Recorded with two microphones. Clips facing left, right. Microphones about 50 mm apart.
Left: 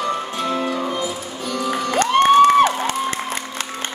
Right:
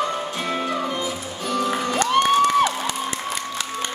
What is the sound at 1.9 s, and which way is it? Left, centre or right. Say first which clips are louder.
Cheering: left 6 dB; left.